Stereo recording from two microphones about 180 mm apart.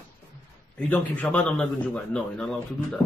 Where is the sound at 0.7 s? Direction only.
10° left (ahead or behind).